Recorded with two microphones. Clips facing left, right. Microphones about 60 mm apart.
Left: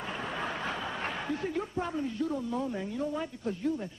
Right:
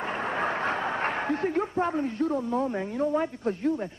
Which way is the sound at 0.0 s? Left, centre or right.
Right.